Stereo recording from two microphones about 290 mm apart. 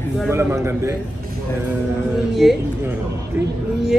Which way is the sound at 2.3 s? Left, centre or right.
Centre.